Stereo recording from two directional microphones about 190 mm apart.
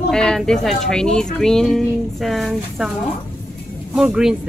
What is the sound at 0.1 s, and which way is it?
Speech, 5° left (ahead or behind).